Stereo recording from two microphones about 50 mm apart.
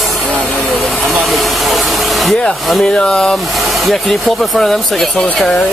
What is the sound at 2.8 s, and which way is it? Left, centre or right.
Speech, centre.